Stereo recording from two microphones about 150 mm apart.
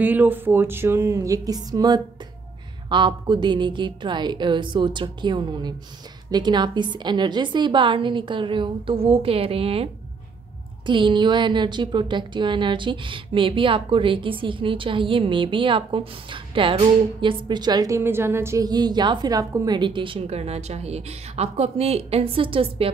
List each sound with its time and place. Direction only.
0.0 s a woman's voice: 10° right (ahead or behind); by 9.8 s 40° right (ahead or behind)
10.9 s a woman's voice: 30° right (ahead or behind)